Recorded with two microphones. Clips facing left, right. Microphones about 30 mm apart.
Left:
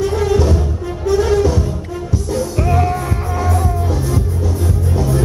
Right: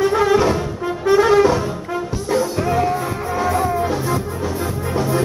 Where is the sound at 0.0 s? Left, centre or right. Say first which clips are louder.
Right 1 dB; right.